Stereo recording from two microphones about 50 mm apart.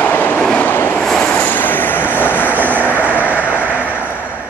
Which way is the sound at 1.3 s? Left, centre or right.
Left.